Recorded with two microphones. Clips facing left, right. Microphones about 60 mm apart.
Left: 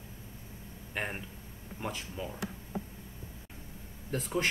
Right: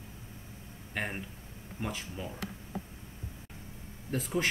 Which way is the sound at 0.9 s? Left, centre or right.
Centre.